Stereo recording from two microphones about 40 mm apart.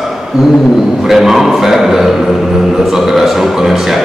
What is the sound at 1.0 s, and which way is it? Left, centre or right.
A man's voice, centre.